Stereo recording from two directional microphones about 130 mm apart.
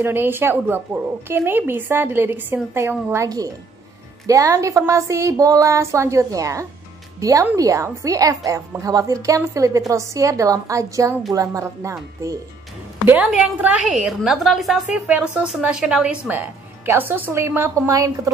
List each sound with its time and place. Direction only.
0.0 s a woman's voice: 15° right (ahead or behind)
13.0 s a woman's voice: 15° right (ahead or behind)